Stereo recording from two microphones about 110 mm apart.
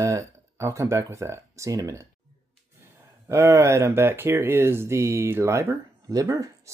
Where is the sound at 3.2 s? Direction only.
25° right (ahead or behind).